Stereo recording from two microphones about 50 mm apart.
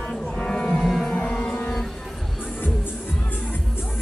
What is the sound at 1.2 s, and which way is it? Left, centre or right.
Music, centre.